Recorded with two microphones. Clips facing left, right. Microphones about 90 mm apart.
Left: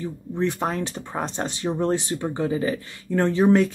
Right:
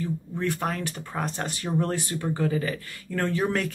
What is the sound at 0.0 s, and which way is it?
Speech, 20° left (ahead or behind).